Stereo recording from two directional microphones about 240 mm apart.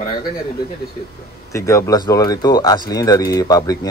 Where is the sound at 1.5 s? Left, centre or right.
Centre.